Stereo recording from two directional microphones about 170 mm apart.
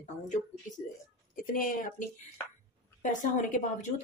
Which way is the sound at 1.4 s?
55° left (ahead or behind).